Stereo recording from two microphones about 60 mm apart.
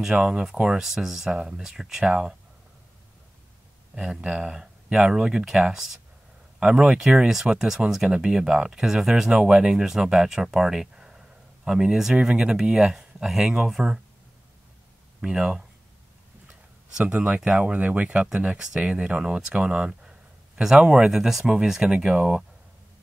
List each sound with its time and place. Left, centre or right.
0.1 s speech: centre
3.9 s speech: centre
15.2 s speech: centre
17.0 s speech: right
17.4 s speech: centre